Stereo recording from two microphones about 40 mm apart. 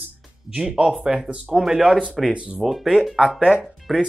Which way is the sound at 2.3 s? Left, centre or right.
Right.